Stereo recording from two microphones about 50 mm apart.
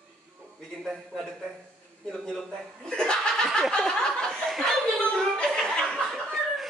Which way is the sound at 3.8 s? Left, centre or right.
Centre.